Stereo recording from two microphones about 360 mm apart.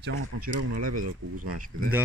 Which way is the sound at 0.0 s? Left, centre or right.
Right.